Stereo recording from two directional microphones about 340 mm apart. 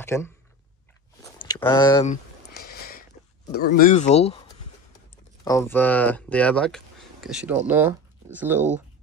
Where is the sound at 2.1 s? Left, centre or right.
Left.